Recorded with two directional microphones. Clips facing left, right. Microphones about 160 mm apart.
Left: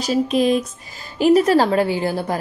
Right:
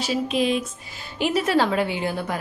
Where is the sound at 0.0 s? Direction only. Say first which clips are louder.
Left 5 dB; 40° left (ahead or behind).